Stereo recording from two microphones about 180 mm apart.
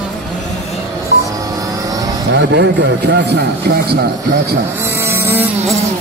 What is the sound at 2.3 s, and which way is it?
Speech, 75° right (ahead or behind).